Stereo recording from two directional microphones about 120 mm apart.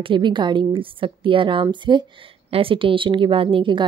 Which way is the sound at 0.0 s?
45° right (ahead or behind).